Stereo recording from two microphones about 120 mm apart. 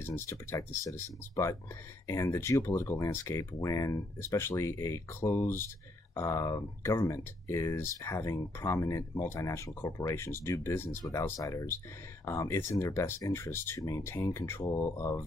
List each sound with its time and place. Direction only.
0.0 s speech: 20° left (ahead or behind)